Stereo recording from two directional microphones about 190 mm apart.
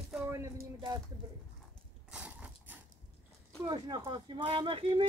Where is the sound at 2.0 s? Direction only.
5° right (ahead or behind).